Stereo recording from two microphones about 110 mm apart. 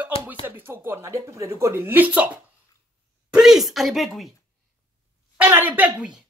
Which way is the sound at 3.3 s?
5° right (ahead or behind).